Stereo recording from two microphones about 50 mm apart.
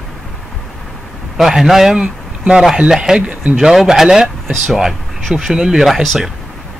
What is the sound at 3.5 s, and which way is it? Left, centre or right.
Speech, centre.